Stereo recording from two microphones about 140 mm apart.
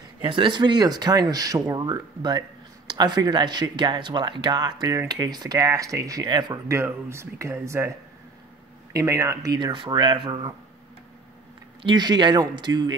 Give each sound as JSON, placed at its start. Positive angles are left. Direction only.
{"t": 0.2, "sound": "speech", "side_deg": -35}
{"t": 8.9, "sound": "speech", "side_deg": -20}
{"t": 11.8, "sound": "speech", "side_deg": -30}